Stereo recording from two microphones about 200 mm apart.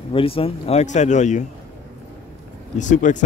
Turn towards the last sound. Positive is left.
turn(degrees=40)  # may be behind; listen again after turning